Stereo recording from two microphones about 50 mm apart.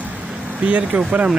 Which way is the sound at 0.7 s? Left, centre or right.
Right.